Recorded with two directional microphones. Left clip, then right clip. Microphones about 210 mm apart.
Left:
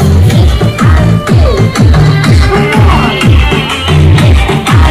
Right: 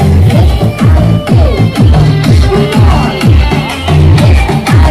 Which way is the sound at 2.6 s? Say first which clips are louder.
Left 3 dB; 50° right (ahead or behind).